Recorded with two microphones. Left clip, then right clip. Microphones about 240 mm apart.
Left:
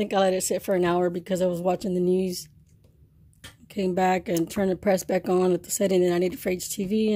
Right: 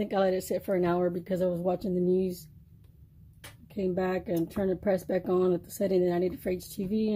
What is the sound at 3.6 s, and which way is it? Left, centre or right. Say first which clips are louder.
Speech: left 7 dB; left.